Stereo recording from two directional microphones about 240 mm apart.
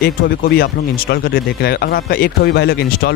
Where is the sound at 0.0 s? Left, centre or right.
Left.